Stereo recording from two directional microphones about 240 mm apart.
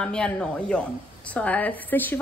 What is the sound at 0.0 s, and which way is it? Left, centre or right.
A woman's voice, centre.